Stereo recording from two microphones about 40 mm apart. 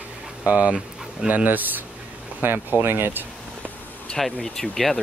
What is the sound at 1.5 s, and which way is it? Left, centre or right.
Speech, right.